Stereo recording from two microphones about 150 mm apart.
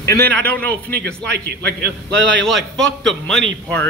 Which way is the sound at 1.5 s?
90° right.